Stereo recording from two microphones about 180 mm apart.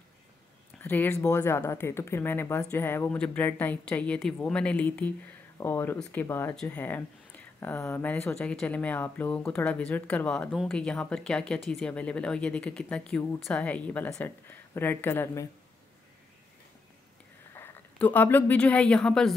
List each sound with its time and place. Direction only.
0.7 s speech: 10° left (ahead or behind)
17.6 s speech: 10° left (ahead or behind)